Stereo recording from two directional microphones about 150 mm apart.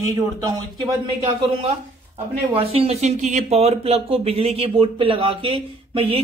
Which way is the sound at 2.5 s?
40° right (ahead or behind).